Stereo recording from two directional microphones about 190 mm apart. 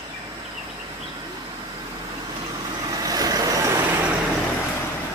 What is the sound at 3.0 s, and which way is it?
Vehicle, 20° right (ahead or behind).